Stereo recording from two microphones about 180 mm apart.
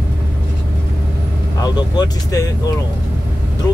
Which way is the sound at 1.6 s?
20° left (ahead or behind).